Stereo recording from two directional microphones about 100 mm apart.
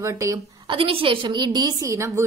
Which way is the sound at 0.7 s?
65° right (ahead or behind).